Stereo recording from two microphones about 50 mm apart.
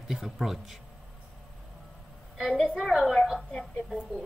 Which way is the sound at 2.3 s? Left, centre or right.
Centre.